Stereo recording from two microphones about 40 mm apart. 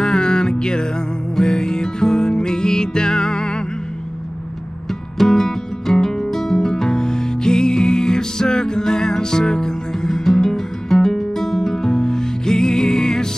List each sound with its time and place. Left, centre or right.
0.0 s music: centre
5.2 s music: centre